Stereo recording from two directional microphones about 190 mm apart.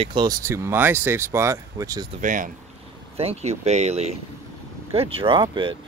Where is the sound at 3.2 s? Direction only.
35° right (ahead or behind).